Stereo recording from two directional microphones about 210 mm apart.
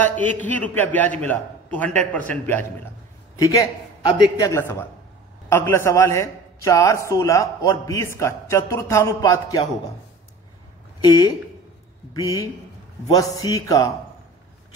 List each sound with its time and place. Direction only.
0.0 s a man's voice: 10° left (ahead or behind)
11.0 s a woman's voice: 20° left (ahead or behind)